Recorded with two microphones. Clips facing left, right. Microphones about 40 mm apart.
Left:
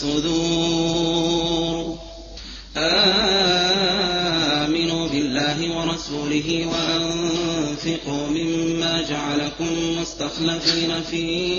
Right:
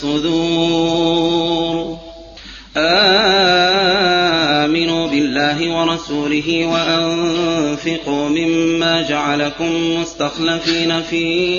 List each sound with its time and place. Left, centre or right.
0.0 s mantra: right
2.8 s music: right